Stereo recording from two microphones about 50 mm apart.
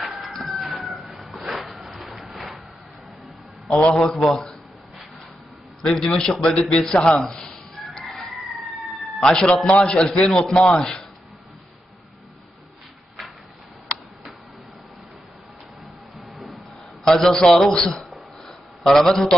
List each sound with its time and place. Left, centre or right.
0.1 s a sound: centre
3.6 s a man's voice: centre
5.8 s a man's voice: centre
7.3 s music: centre
7.9 s crowing: centre
9.2 s a man's voice: centre
17.0 s a man's voice: centre